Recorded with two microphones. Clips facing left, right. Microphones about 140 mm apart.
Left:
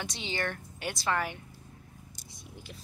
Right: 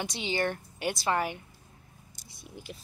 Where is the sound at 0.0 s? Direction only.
10° right (ahead or behind).